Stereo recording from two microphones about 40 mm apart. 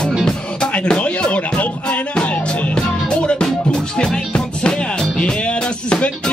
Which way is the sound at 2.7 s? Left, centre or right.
Left.